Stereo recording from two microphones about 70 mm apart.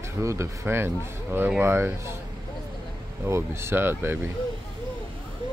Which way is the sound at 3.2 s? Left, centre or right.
Right.